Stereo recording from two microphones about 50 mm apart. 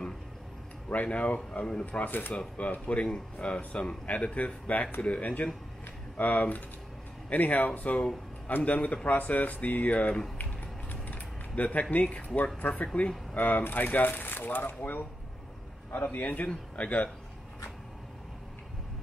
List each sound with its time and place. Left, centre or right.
0.8 s speech: left
2.0 s speech: left
2.3 s speech: left
10.3 s typing: left
12.8 s a man's voice: left
16.2 s speech: left